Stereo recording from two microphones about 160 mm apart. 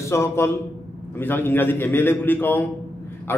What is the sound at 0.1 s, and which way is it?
A man's voice, 15° left (ahead or behind).